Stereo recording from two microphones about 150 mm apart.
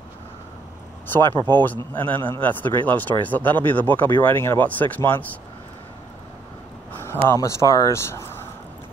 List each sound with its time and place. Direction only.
1.1 s speech: 15° left (ahead or behind)
7.0 s a sound: 15° left (ahead or behind)
7.4 s speech: 20° left (ahead or behind)